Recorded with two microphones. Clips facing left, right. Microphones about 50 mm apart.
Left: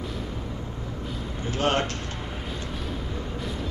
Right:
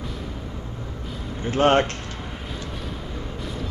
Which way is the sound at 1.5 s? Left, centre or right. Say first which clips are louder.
Right 7 dB; right.